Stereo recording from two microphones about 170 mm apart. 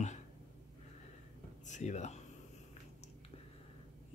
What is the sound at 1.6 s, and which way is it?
Speech, 45° left (ahead or behind).